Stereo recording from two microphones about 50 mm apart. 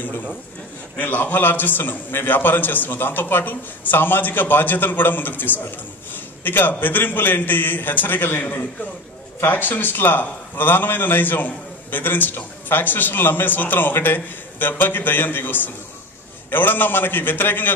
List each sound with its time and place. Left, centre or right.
0.9 s a man's voice: left
6.1 s a sound: left
6.8 s a man's voice: left